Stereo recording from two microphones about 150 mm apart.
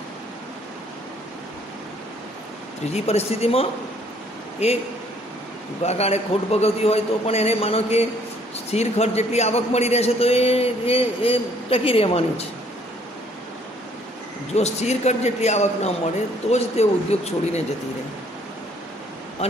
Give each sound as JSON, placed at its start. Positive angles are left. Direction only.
{"t": 2.9, "sound": "a man's voice", "side_deg": 45}
{"t": 14.5, "sound": "a man's voice", "side_deg": 45}